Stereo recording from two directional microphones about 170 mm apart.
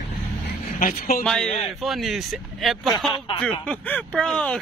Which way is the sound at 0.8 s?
55° left (ahead or behind).